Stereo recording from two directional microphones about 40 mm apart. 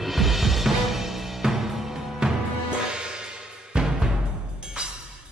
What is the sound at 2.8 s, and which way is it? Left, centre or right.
Music, right.